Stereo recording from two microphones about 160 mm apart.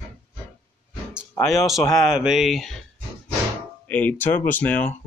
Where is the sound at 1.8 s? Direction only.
20° left (ahead or behind).